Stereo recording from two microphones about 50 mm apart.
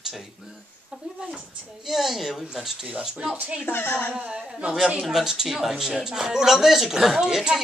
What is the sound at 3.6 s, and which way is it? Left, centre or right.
Speech, left.